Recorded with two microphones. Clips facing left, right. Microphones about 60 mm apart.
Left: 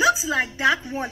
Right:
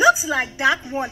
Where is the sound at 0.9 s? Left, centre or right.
Right.